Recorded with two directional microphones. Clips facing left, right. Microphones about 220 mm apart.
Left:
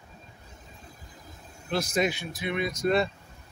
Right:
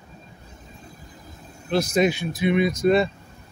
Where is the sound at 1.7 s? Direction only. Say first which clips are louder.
Right 6 dB; 20° right (ahead or behind).